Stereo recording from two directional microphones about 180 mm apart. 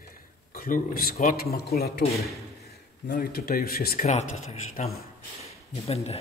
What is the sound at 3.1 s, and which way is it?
Speech, 60° left (ahead or behind).